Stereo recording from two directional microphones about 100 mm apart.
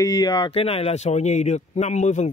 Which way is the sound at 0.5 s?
85° left.